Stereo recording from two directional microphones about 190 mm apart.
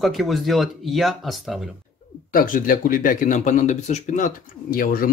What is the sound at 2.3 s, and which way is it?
Speech, 45° left (ahead or behind).